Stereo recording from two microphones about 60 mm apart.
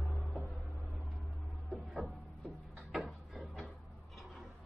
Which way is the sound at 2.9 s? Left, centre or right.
Centre.